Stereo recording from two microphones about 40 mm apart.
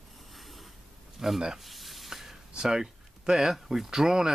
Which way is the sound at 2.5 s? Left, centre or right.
Centre.